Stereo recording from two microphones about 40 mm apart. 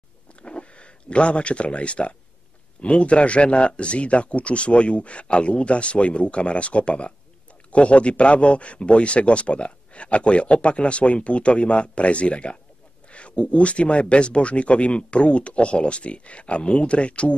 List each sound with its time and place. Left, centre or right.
0.4 s speech: left